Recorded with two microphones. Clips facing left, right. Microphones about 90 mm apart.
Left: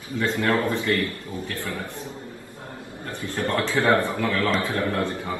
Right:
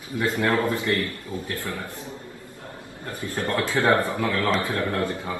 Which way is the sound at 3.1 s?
25° left (ahead or behind).